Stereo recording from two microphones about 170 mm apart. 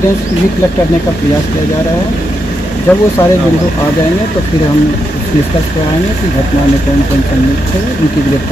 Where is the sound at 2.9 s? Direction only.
10° left (ahead or behind).